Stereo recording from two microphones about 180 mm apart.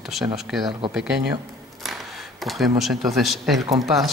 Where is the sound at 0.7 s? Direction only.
25° right (ahead or behind).